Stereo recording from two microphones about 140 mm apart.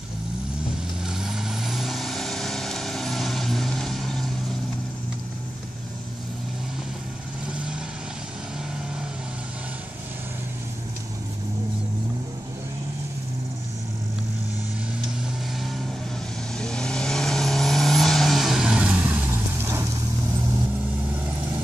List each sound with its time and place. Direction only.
1.0 s vehicle: 5° right (ahead or behind)
16.5 s vehicle: 5° left (ahead or behind); by 19.9 s 20° right (ahead or behind)